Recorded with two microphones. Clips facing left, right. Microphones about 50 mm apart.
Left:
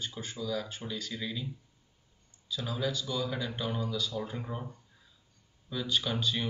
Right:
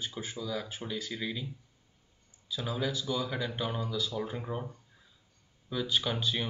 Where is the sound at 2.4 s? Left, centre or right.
Centre.